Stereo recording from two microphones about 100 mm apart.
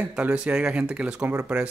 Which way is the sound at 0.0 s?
10° right (ahead or behind).